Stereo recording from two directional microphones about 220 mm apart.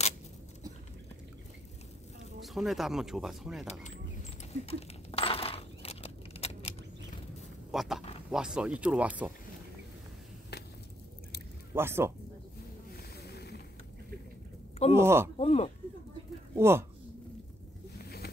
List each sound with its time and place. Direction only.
2.4 s speech: centre (ahead or behind)
4.5 s coin: 25° left (ahead or behind)
7.7 s speech: centre (ahead or behind)
11.7 s speech: 10° right (ahead or behind)
12.9 s a sound: 45° left (ahead or behind)
15.0 s speech: 10° right (ahead or behind)
15.3 s a sound: 30° left (ahead or behind)
16.5 s speech: 10° right (ahead or behind)
17.9 s vehicle: 45° left (ahead or behind)